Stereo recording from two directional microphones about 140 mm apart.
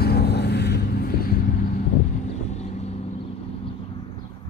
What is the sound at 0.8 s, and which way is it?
Vehicle, 90° left.